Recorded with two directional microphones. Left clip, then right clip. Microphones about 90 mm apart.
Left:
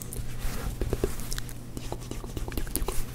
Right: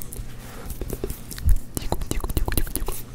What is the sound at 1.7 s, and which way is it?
Whispering, 40° right (ahead or behind).